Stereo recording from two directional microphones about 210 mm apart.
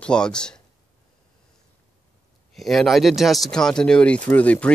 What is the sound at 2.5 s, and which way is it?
Speech, centre (ahead or behind).